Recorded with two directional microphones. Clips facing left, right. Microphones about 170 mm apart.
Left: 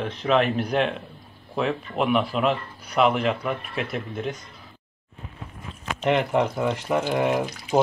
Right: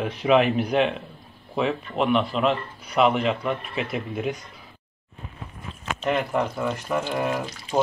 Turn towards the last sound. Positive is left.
turn(degrees=15)  # may be behind; listen again after turning